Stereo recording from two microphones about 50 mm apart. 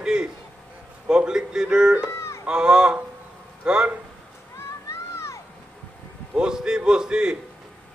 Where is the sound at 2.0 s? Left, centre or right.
Left.